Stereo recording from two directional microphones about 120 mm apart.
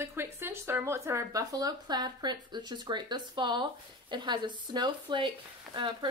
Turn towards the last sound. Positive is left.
turn(degrees=-40)  # may be behind; listen again after turning